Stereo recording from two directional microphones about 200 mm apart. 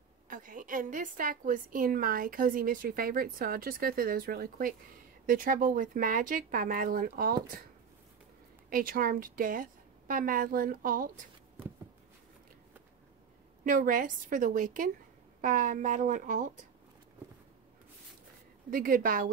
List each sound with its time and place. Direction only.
0.3 s a woman's voice: 40° right (ahead or behind)
8.6 s a woman's voice: 45° right (ahead or behind)
13.7 s a woman's voice: 45° right (ahead or behind)
18.7 s a woman's voice: 45° right (ahead or behind)